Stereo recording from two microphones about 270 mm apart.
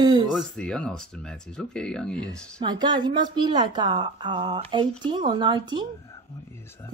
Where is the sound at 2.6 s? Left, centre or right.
Centre.